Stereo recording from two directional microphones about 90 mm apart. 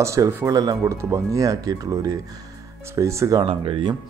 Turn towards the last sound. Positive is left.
turn(degrees=-90)